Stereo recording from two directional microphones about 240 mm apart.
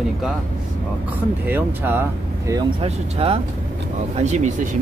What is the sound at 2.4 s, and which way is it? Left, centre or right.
Speech, centre.